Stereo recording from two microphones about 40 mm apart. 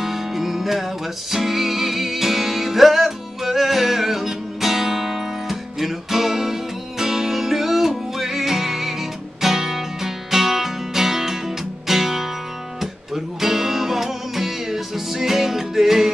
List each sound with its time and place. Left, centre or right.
0.0 s music: centre